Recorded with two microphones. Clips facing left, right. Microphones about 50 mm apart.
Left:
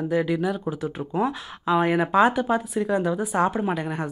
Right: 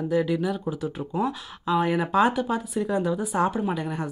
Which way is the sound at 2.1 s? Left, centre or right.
Centre.